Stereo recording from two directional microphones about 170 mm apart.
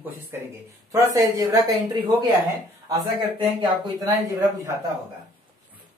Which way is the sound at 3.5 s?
25° right (ahead or behind).